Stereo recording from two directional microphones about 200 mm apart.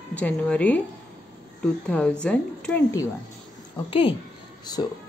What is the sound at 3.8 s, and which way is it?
Speech, 25° left (ahead or behind).